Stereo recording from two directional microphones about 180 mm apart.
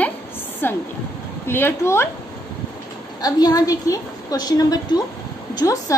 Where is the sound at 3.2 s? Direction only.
20° left (ahead or behind).